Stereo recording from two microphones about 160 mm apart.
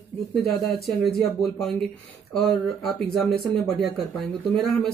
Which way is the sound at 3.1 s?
Centre (ahead or behind).